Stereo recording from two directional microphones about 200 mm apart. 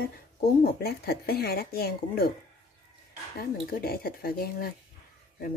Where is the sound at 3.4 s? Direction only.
50° left (ahead or behind).